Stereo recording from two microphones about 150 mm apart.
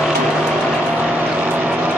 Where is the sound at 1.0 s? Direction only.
10° right (ahead or behind).